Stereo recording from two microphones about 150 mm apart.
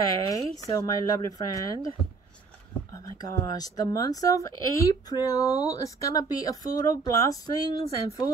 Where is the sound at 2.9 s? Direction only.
25° left (ahead or behind).